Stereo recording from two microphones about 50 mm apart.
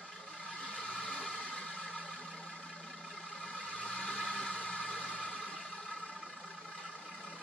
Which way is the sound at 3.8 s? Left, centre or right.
Left.